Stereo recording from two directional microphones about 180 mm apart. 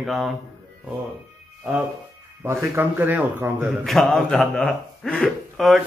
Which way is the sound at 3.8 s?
Centre (ahead or behind).